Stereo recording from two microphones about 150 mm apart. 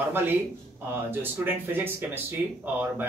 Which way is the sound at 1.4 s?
15° right (ahead or behind).